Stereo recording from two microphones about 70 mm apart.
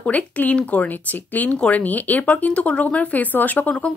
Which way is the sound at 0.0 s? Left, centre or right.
Left.